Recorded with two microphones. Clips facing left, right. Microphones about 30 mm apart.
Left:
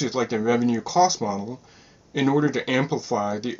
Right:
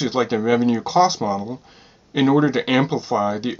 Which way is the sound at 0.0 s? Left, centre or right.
Right.